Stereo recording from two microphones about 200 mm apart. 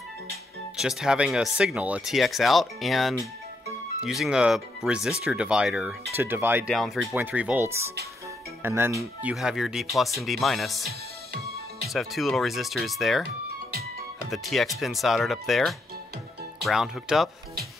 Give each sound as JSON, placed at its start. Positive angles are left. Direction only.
{"t": 0.7, "sound": "speech", "side_deg": -5}
{"t": 10.9, "sound": "music", "side_deg": -50}
{"t": 11.9, "sound": "speech", "side_deg": 0}
{"t": 14.3, "sound": "speech", "side_deg": 0}